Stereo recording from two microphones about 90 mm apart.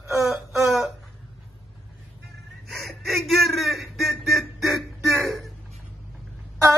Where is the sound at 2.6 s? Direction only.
Centre (ahead or behind).